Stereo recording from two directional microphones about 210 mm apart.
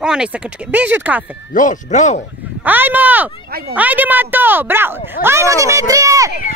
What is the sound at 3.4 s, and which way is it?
Speech, 45° right (ahead or behind).